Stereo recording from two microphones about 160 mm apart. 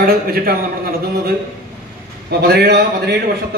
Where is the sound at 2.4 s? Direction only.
90° right.